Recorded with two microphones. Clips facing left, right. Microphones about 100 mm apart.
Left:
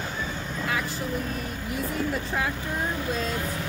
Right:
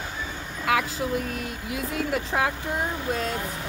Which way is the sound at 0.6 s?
90° right.